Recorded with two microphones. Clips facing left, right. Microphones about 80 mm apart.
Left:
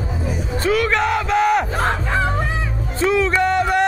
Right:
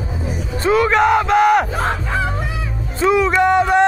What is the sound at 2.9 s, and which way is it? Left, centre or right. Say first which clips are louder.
Music: right 3 dB; centre.